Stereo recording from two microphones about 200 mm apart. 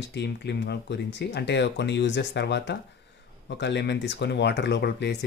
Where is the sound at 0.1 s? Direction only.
60° left (ahead or behind).